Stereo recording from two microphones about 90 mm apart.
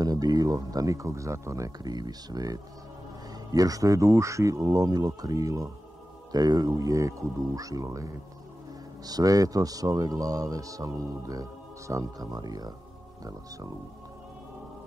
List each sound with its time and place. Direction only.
0.0 s a man's voice: 45° right (ahead or behind)